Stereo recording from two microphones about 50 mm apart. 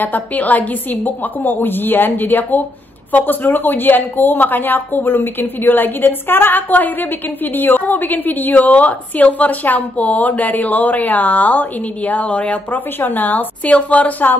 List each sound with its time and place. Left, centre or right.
0.0 s a woman's voice: left
13.0 s a woman's voice: left
13.7 s a woman's voice: left